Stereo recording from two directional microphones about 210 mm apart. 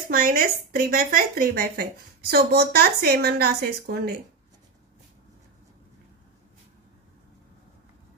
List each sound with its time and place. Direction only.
0.1 s a woman's voice: 45° right (ahead or behind)